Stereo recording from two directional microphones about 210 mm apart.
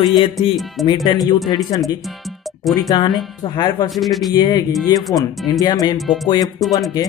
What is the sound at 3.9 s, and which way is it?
Speech, centre (ahead or behind).